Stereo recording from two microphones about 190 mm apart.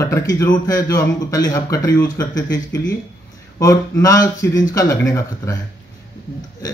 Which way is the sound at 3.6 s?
20° left (ahead or behind).